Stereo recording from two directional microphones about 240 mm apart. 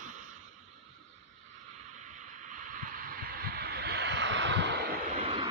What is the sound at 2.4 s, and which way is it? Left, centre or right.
Vehicle, right.